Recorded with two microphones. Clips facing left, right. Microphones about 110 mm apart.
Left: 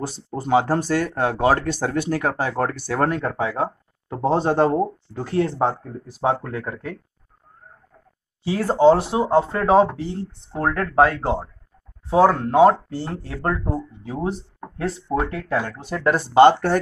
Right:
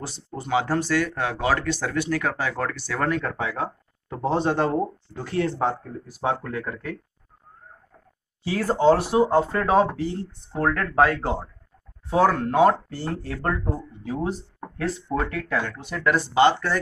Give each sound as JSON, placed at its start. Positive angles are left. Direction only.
{"t": 0.3, "sound": "speech", "side_deg": 40}
{"t": 3.3, "sound": "speech", "side_deg": 30}
{"t": 8.5, "sound": "speech", "side_deg": 25}
{"t": 15.8, "sound": "speech", "side_deg": 35}